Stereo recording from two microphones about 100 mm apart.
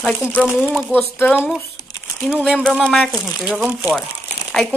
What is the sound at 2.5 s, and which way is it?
Speech, 10° left (ahead or behind).